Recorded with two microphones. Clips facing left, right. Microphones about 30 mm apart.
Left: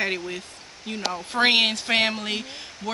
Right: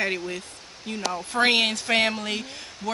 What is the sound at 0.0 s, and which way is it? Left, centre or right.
Speech, centre.